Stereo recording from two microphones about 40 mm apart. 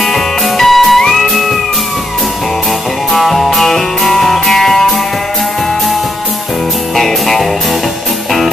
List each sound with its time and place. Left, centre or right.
0.0 s music: centre
3.1 s music: centre
7.0 s music: centre